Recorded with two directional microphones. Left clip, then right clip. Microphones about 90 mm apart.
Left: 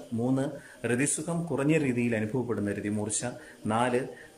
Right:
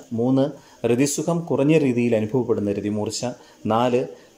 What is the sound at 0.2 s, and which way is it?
Speech, 25° right (ahead or behind).